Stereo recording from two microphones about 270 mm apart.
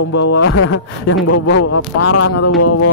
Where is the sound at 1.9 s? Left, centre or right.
Left.